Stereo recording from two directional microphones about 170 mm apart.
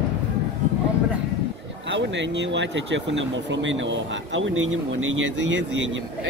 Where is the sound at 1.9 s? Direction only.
90° right.